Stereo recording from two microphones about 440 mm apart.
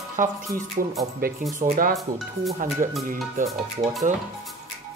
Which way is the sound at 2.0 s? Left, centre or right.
Centre.